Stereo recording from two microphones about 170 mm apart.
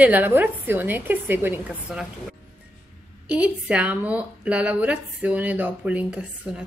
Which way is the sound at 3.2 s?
5° right (ahead or behind).